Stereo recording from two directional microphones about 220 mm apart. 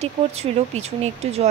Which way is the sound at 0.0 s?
30° right (ahead or behind).